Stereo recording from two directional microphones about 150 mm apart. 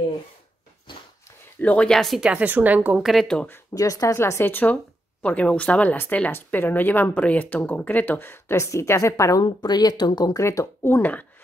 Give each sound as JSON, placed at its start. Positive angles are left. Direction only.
{"t": 0.9, "sound": "dog", "side_deg": 35}
{"t": 1.6, "sound": "speech", "side_deg": 10}